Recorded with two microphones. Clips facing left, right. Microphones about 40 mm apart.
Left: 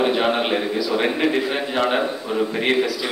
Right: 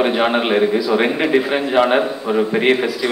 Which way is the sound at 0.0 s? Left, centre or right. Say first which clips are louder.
Right 3 dB; centre.